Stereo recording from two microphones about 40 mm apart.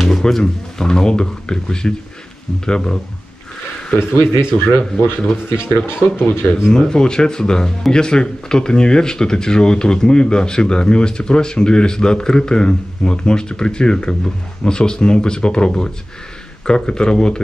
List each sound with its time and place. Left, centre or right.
0.0 s speech: centre
4.0 s speech: left
6.7 s speech: centre